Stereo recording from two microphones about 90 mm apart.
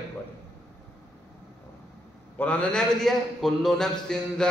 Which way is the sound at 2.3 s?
15° left (ahead or behind).